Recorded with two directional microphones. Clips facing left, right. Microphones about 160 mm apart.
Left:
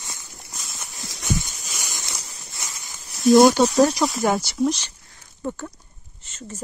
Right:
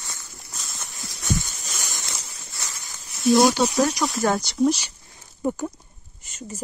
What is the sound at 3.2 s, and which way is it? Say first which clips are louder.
Speech: left 4 dB; 50° left (ahead or behind).